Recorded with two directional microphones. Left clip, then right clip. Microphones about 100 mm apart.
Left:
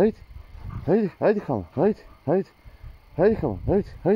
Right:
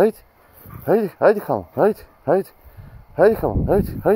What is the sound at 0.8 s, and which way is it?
Speech, 30° left (ahead or behind).